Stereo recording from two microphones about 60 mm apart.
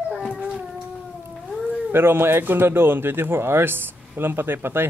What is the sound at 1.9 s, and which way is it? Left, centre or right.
Speech, right.